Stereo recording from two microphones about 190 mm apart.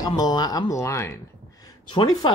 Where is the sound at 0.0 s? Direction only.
20° left (ahead or behind).